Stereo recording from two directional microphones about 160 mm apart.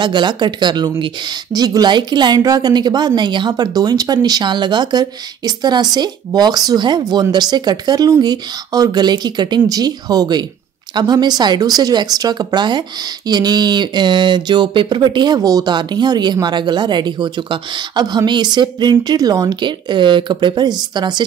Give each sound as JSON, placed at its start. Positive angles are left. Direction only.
{"t": 0.0, "sound": "a woman's voice", "side_deg": -30}